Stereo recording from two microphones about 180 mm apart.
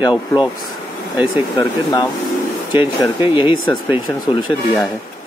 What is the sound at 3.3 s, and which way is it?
Speech, 25° left (ahead or behind).